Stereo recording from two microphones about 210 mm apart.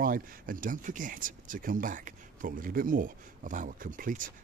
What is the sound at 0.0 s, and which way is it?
Speech, 40° right (ahead or behind).